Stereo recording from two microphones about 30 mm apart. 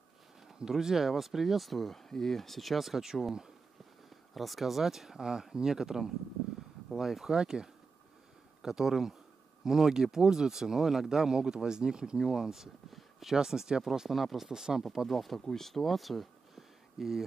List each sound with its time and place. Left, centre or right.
0.7 s speech: centre
2.0 s speech: centre
4.3 s speech: centre
5.2 s speech: right
7.2 s speech: right
12.9 s a sound: centre
13.5 s speech: right
14.0 s speech: centre
14.5 s speech: right
14.8 s speech: centre
15.0 s speech: centre
15.4 s speech: centre